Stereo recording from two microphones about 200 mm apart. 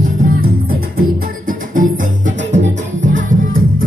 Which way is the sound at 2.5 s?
40° right (ahead or behind).